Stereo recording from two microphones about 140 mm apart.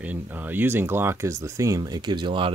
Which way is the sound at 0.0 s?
10° right (ahead or behind).